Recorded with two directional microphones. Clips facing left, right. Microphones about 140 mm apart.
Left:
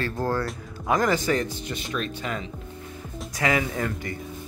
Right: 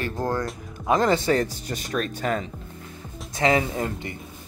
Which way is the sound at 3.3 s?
25° right (ahead or behind).